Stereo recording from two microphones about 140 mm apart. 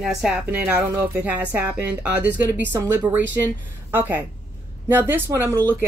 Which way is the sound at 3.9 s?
15° right (ahead or behind).